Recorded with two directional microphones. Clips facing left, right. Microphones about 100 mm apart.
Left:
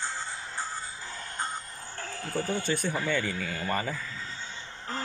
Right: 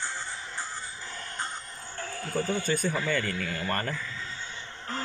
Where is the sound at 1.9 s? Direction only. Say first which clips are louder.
Right 2 dB; 40° left (ahead or behind).